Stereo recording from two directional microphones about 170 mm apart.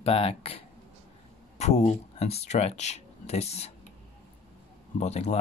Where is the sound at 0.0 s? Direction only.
35° left (ahead or behind).